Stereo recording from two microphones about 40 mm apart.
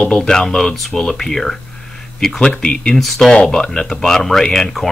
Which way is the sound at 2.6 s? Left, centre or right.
Left.